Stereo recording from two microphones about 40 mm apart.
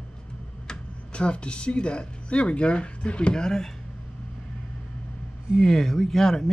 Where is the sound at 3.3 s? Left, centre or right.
Centre.